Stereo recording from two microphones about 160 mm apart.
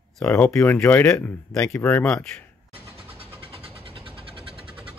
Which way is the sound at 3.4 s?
35° right (ahead or behind).